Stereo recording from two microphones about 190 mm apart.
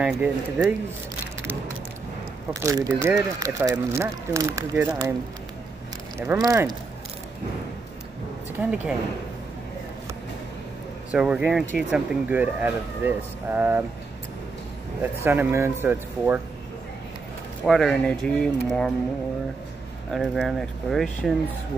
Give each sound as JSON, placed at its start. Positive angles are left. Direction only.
{"t": 2.6, "sound": "speech", "side_deg": -15}
{"t": 6.1, "sound": "speech", "side_deg": -15}
{"t": 8.5, "sound": "speech", "side_deg": -5}
{"t": 11.1, "sound": "speech", "side_deg": -5}
{"t": 15.0, "sound": "speech", "side_deg": -10}
{"t": 17.6, "sound": "speech", "side_deg": 0}
{"t": 20.1, "sound": "speech", "side_deg": 0}